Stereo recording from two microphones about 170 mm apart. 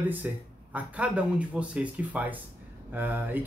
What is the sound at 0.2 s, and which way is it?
Speech, 10° right (ahead or behind).